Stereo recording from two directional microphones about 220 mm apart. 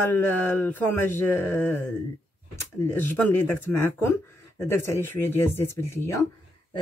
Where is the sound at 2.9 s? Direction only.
10° left (ahead or behind).